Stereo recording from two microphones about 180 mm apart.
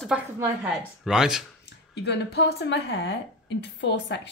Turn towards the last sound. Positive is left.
turn(degrees=75)  # may be behind; listen again after turning